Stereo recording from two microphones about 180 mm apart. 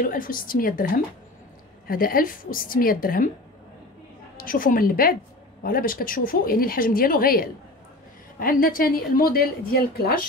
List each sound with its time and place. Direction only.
0.0 s speech: 50° left (ahead or behind)
4.4 s speech: 50° left (ahead or behind)